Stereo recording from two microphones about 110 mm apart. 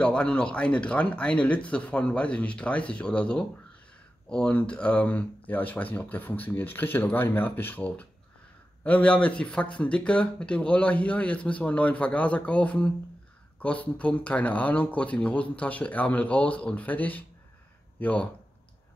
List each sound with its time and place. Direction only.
0.0 s speech: 10° left (ahead or behind)